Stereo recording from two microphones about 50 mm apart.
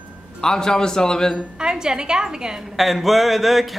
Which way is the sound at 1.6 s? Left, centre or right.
Centre.